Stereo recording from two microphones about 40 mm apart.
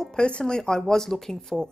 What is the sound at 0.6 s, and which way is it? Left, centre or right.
A woman's voice, centre.